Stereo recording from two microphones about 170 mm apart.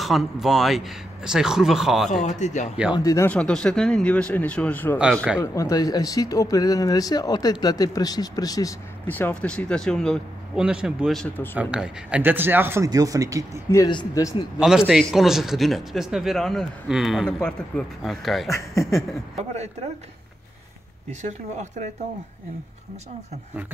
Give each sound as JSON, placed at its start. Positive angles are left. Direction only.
{"t": 0.0, "sound": "speech", "side_deg": 0}
{"t": 2.2, "sound": "speech", "side_deg": 45}
{"t": 2.9, "sound": "speech", "side_deg": 20}
{"t": 3.3, "sound": "speech", "side_deg": 5}
{"t": 9.0, "sound": "speech", "side_deg": 10}
{"t": 11.5, "sound": "speech", "side_deg": -5}
{"t": 13.7, "sound": "speech", "side_deg": 20}
{"t": 14.6, "sound": "speech", "side_deg": -5}
{"t": 18.5, "sound": "speech", "side_deg": 15}
{"t": 21.1, "sound": "speech", "side_deg": -45}